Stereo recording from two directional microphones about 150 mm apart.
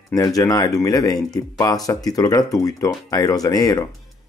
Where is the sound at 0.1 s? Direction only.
25° left (ahead or behind).